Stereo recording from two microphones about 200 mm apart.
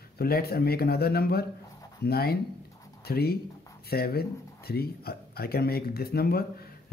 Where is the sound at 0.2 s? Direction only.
50° left (ahead or behind).